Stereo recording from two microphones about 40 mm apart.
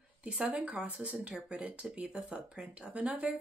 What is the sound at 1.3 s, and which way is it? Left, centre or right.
Speech, right.